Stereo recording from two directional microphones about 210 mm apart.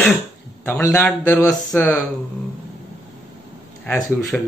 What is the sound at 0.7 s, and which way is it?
Speech, 10° left (ahead or behind).